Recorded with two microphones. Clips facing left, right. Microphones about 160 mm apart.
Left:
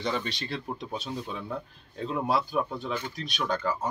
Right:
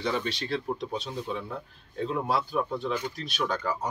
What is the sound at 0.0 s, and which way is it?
Speech, centre (ahead or behind).